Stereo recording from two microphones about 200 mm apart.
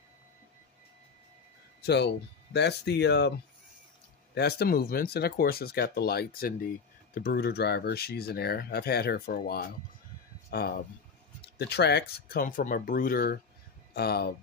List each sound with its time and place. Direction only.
1.8 s speech: 55° left (ahead or behind)
4.4 s speech: 55° left (ahead or behind)